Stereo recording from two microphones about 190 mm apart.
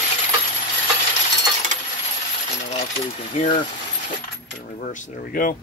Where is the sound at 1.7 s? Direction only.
40° right (ahead or behind).